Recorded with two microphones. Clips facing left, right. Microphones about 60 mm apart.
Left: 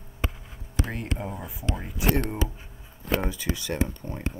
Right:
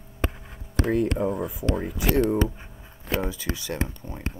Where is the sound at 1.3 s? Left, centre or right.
Right.